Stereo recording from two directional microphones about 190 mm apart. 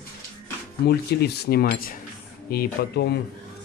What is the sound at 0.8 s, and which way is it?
Speech, 55° left (ahead or behind).